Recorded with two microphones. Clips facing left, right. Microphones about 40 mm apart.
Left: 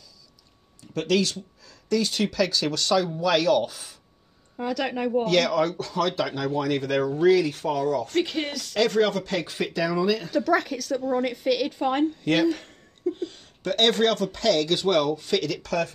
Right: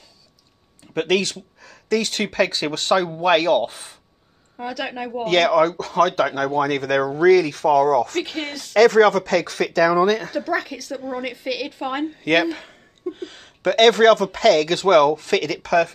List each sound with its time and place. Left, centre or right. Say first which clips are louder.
0.9 s speech: right 3 dB; right
4.6 s speech: left 1 dB; centre
5.2 s speech: right 8 dB; right
8.7 s speech: right 9 dB; right
10.3 s speech: left 1 dB; centre
11.0 s speech: left 4 dB; right
11.2 s speech: left 2 dB; centre
11.8 s a woman's voice: left 1 dB; right
12.2 s speech: right 4 dB; right
12.4 s laughter: left 2 dB; right
13.3 s a sound: right 5 dB; right
13.7 s speech: right 8 dB; right